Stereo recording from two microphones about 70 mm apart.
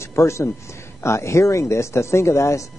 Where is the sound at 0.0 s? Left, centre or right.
Left.